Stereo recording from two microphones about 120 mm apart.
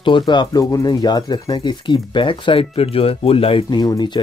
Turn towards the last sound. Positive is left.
turn(degrees=35)  # may be behind; listen again after turning